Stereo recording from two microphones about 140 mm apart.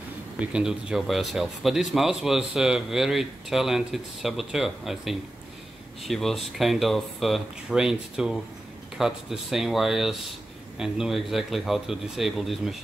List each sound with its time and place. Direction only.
0.4 s speech: 5° right (ahead or behind)